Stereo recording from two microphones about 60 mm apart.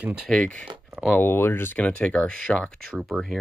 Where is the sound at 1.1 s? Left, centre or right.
Left.